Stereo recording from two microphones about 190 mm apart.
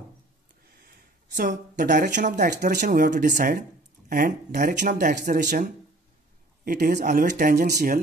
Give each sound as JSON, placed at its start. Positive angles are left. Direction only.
{"t": 1.3, "sound": "speech", "side_deg": -45}